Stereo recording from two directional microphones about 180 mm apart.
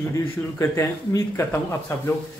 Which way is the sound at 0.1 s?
15° left (ahead or behind).